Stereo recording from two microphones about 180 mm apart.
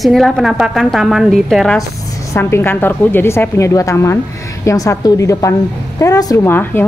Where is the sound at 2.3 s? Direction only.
15° left (ahead or behind).